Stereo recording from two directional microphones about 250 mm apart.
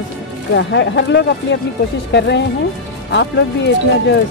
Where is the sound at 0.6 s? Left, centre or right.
Left.